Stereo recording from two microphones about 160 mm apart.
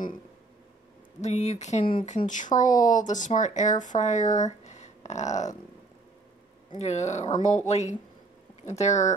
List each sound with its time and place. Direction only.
1.2 s speech: 45° left (ahead or behind)
6.8 s speech: 45° left (ahead or behind)